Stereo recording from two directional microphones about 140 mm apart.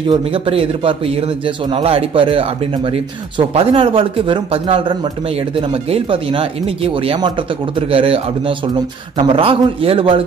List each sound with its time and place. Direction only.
0.1 s a man's voice: 40° right (ahead or behind)